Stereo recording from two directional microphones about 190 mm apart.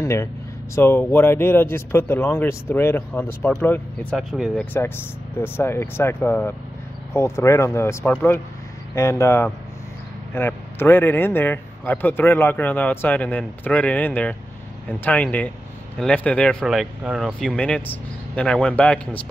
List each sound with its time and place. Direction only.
0.0 s speech: 15° left (ahead or behind)
4.7 s speech: 10° left (ahead or behind)